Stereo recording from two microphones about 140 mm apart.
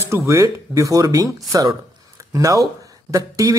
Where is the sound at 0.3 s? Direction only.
20° right (ahead or behind).